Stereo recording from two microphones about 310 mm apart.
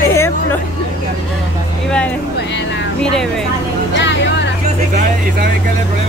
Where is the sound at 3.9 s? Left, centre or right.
Left.